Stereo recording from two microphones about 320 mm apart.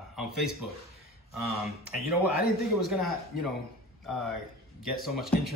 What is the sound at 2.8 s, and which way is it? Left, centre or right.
Speech, centre.